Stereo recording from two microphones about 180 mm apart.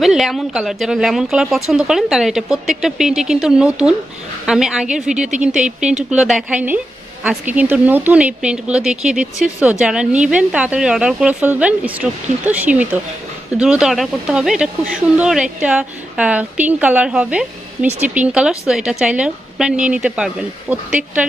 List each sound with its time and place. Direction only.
0.0 s speech: centre (ahead or behind)
5.6 s speech: 40° right (ahead or behind)
6.0 s speech: centre (ahead or behind)